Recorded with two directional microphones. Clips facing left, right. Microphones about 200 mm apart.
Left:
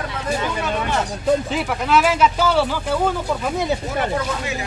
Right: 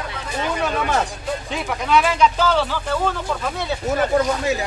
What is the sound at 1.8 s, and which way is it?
Speech, 5° left (ahead or behind).